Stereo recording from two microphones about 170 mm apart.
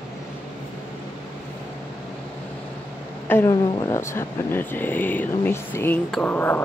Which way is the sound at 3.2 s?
15° left (ahead or behind).